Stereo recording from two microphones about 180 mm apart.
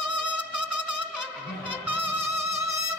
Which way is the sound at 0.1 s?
25° right (ahead or behind).